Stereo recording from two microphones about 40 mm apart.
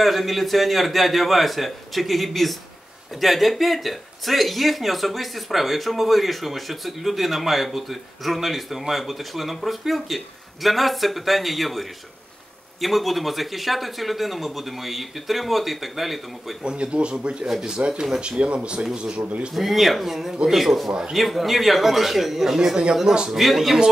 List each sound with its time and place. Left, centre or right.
0.0 s speech: centre
16.6 s speech: right
17.5 s a man's voice: centre
17.7 s speech: right
19.5 s a man's voice: centre
23.4 s speech: centre